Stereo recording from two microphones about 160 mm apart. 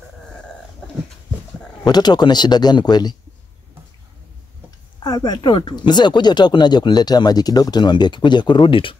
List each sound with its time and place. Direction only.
1.9 s speech: 25° left (ahead or behind)
4.6 s speech: 25° left (ahead or behind)